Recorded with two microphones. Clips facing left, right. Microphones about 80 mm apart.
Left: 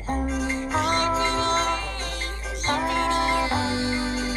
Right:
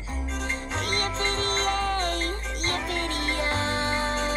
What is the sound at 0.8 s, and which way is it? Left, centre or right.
Music, right.